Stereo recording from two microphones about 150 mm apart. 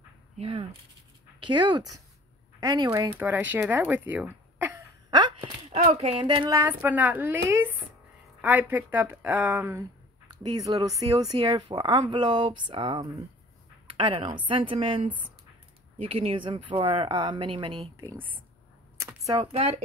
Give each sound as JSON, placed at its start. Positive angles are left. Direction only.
{"t": 0.4, "sound": "speech", "side_deg": -40}
{"t": 1.4, "sound": "speech", "side_deg": -30}
{"t": 5.1, "sound": "a sound", "side_deg": -30}
{"t": 5.9, "sound": "speech", "side_deg": -40}
{"t": 6.5, "sound": "speech", "side_deg": -15}
{"t": 10.4, "sound": "a woman's voice", "side_deg": -30}
{"t": 18.0, "sound": "speech", "side_deg": -15}
{"t": 18.9, "sound": "a sound", "side_deg": -20}